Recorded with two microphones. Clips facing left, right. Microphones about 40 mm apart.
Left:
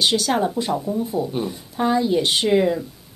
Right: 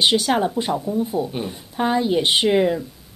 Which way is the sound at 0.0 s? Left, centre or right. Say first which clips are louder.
Right 1 dB; centre.